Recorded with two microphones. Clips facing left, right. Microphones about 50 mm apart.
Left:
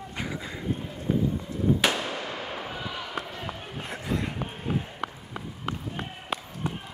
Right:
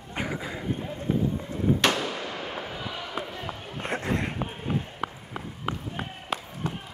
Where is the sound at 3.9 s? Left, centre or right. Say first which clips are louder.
Right 2 dB; right.